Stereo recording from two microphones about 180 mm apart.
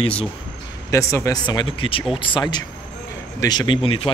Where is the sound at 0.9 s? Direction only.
15° left (ahead or behind).